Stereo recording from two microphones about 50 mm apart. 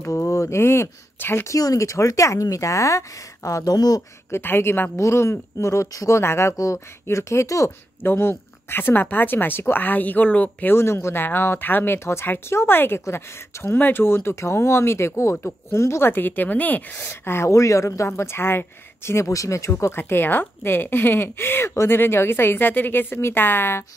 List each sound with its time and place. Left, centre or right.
0.1 s a woman's voice: left
1.5 s speech: left
4.4 s speech: left
4.9 s speech: left
8.0 s speech: left
10.7 s a woman's voice: left
11.2 s a woman's voice: left
13.7 s speech: left
14.0 s a woman's voice: left
16.1 s speech: left
17.0 s speech: left
17.5 s speech: left
18.0 s a woman's voice: left
20.0 s speech: left